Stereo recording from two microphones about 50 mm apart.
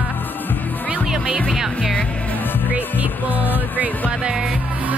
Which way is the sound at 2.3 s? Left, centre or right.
Left.